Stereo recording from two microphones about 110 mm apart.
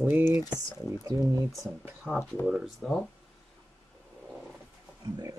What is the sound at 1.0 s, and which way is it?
Speech, 35° right (ahead or behind).